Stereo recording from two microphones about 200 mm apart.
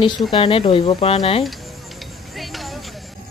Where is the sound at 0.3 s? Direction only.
25° left (ahead or behind).